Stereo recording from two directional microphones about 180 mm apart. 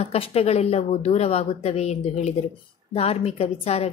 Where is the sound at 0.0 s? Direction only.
35° left (ahead or behind).